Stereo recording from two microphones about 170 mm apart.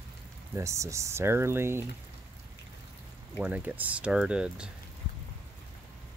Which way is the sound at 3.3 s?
10° right (ahead or behind).